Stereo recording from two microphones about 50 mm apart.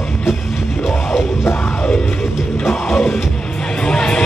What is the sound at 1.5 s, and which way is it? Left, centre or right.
Music, left.